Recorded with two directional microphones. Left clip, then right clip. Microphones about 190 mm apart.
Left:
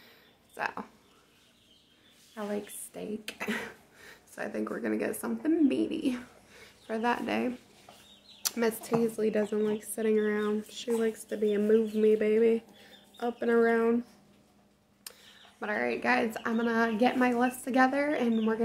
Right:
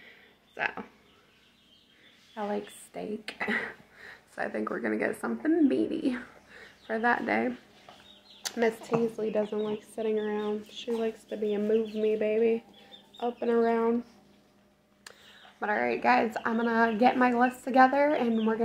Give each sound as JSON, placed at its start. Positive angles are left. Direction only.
{"t": 0.6, "sound": "speech", "side_deg": 5}
{"t": 2.3, "sound": "speech", "side_deg": 10}
{"t": 15.1, "sound": "a sound", "side_deg": 10}
{"t": 15.6, "sound": "speech", "side_deg": 5}